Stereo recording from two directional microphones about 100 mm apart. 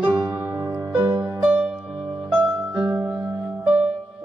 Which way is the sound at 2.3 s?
15° right (ahead or behind).